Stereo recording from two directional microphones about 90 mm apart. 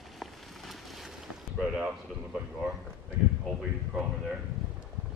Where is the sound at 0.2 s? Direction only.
Centre (ahead or behind).